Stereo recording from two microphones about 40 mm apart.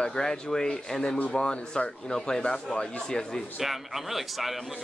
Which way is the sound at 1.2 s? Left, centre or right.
Left.